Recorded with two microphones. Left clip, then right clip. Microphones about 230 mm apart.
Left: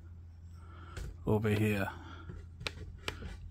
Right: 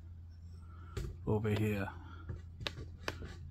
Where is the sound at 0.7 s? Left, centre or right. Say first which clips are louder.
Right 1 dB; left.